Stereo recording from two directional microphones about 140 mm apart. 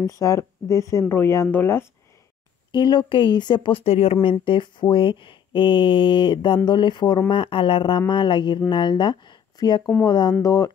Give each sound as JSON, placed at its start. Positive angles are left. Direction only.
{"t": 0.2, "sound": "speech", "side_deg": 20}
{"t": 2.7, "sound": "speech", "side_deg": 35}